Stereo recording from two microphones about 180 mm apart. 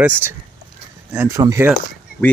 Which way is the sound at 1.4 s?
20° right (ahead or behind).